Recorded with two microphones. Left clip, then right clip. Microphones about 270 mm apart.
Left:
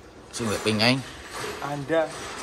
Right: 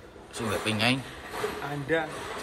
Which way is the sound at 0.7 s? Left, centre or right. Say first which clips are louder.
Left 5 dB; centre.